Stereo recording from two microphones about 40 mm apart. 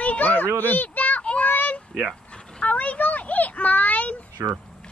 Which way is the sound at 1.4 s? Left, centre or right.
Left.